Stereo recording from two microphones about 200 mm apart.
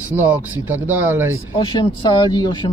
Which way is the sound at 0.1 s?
10° right (ahead or behind).